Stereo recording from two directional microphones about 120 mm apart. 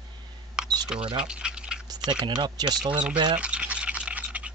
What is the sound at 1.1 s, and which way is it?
Boiling, 5° right (ahead or behind).